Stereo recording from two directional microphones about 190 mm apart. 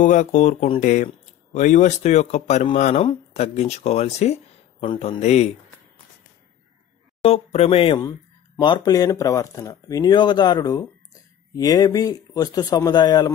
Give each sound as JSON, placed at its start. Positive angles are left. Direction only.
{"t": 0.0, "sound": "speech", "side_deg": 40}
{"t": 7.2, "sound": "speech", "side_deg": 30}